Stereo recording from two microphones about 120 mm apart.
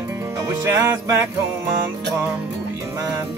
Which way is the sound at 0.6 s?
25° right (ahead or behind).